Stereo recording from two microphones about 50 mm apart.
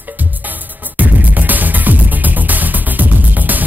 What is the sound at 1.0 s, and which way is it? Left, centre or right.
Music, right.